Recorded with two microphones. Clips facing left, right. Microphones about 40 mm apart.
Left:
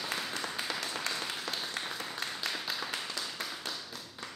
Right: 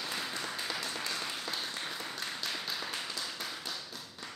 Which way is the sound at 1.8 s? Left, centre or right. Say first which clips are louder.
Left 2 dB; left.